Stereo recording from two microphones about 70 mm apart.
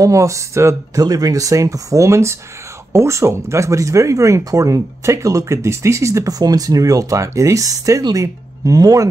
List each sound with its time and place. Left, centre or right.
0.0 s speech: right
1.0 s speech: right
6.3 s speech: right